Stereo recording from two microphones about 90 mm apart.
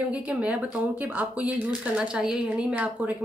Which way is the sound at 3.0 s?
20° right (ahead or behind).